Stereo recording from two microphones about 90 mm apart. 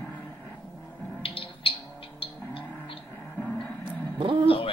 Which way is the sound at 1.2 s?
90° left.